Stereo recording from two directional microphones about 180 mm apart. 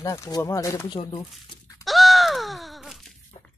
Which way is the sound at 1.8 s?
Centre (ahead or behind).